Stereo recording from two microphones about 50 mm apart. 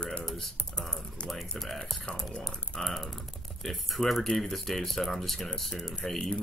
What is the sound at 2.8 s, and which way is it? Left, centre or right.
Speech, centre.